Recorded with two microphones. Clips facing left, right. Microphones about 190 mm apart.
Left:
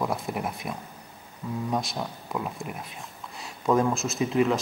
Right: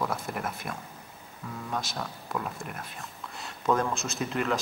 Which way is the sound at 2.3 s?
5° left (ahead or behind).